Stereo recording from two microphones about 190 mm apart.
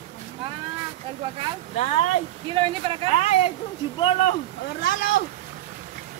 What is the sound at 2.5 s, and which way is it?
Speech, 30° right (ahead or behind).